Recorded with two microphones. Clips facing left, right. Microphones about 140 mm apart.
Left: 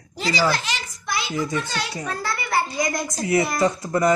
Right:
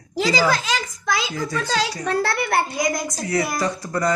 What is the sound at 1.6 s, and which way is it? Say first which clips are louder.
Speech: right 6 dB; 90° right.